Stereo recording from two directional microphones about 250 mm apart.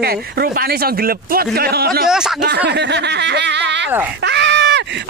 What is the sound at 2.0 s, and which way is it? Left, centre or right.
Speech, centre.